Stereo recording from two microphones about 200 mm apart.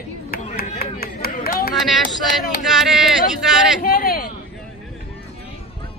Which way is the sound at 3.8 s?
45° left (ahead or behind).